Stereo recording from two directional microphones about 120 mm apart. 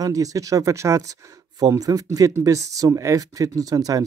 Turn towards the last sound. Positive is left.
turn(degrees=-30)  # may be behind; listen again after turning